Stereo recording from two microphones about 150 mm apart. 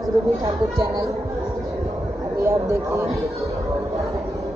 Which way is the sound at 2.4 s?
15° right (ahead or behind).